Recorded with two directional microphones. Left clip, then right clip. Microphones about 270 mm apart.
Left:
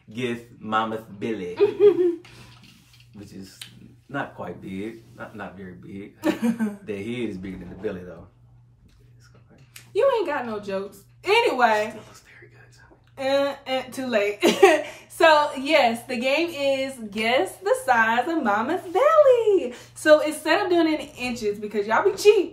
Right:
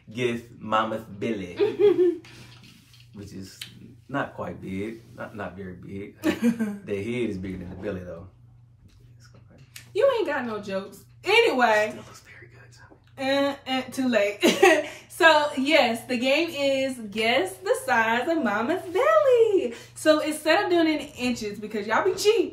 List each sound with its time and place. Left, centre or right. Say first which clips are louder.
0.1 s speech: right 2 dB; centre
1.5 s a woman's voice: left 3 dB; centre
3.2 s a man's voice: right 1 dB; centre
6.9 s speech: right 5 dB; centre
9.8 s a woman's voice: left 1 dB; centre
13.1 s a woman's voice: left 2 dB; centre